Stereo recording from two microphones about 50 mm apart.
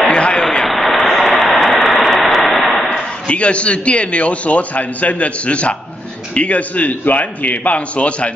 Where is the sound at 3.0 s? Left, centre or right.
Left.